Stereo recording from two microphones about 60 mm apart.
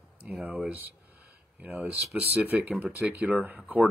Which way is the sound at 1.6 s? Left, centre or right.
Right.